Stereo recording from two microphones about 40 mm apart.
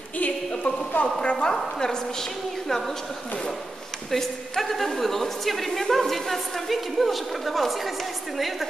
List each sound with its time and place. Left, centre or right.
0.2 s a sound: left
1.2 s a woman's voice: centre
4.1 s a woman's voice: centre